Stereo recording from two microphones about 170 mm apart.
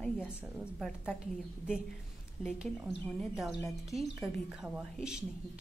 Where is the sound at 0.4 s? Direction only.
Centre (ahead or behind).